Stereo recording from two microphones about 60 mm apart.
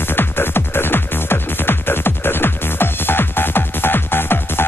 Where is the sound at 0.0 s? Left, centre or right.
Left.